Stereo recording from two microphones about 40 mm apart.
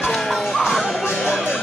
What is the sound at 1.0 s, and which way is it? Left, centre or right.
Music, centre.